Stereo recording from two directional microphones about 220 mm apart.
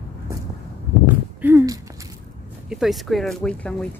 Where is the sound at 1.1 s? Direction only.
10° right (ahead or behind).